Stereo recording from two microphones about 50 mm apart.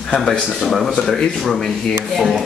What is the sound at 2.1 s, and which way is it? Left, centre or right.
Speech, centre.